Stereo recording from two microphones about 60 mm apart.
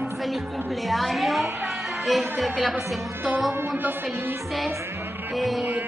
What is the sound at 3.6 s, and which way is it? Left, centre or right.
Speech, right.